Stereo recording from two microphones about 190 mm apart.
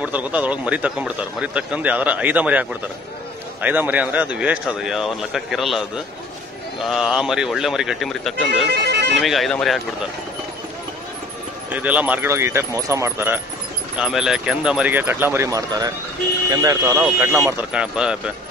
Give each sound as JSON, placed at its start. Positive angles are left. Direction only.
{"t": 0.0, "sound": "speech", "side_deg": -5}
{"t": 6.9, "sound": "speech", "side_deg": 0}
{"t": 8.6, "sound": "bagpipes", "side_deg": -60}
{"t": 9.2, "sound": "speech", "side_deg": 0}
{"t": 11.7, "sound": "speech", "side_deg": -10}